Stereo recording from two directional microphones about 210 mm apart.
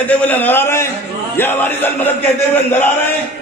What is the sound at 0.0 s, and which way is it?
A man's voice, 10° left (ahead or behind).